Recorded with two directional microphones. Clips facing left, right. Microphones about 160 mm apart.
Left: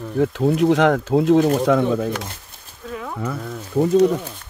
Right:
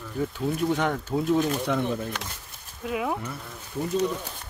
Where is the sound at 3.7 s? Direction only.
65° left (ahead or behind).